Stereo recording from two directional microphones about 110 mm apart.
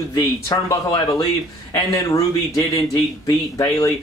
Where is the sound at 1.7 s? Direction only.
35° left (ahead or behind).